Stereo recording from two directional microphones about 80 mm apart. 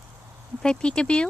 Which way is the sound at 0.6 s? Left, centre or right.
Centre.